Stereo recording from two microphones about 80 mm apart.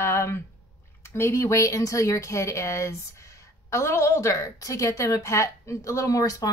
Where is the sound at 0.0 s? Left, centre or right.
Left.